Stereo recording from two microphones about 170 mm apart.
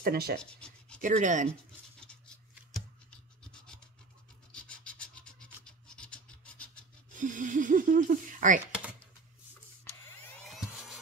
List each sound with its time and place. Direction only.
0.0 s speech: 65° right (ahead or behind)
0.4 s speech: 5° left (ahead or behind)
1.0 s speech: 45° right (ahead or behind)
3.5 s scratch: 5° left (ahead or behind)
7.2 s speech: 50° right (ahead or behind)
10.4 s a sound: centre (ahead or behind)